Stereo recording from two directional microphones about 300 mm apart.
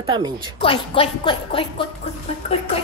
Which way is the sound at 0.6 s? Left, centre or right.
Centre.